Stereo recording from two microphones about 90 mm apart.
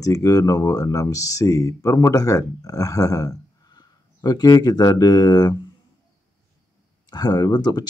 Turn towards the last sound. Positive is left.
turn(degrees=50)  # may be behind; listen again after turning